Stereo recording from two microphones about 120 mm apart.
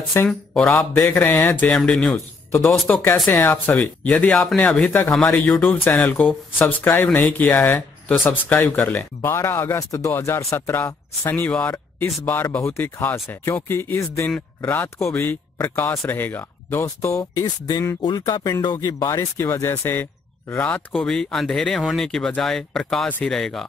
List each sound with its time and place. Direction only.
0.2 s speech: 20° left (ahead or behind)
1.7 s speech: 5° left (ahead or behind)
2.9 s speech: 15° left (ahead or behind)